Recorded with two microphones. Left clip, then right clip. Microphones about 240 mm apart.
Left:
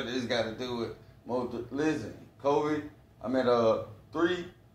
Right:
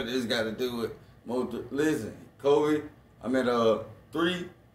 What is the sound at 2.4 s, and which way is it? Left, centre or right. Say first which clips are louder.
A man's voice: right 4 dB; right.